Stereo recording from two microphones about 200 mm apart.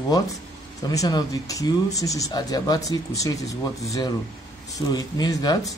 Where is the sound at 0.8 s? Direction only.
20° left (ahead or behind).